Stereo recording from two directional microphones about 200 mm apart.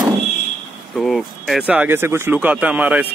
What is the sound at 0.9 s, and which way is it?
Speech, centre (ahead or behind).